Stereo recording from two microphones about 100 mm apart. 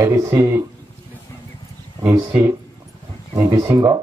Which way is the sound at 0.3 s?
30° right (ahead or behind).